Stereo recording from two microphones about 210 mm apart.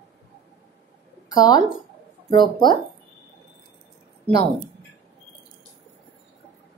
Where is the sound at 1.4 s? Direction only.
20° left (ahead or behind).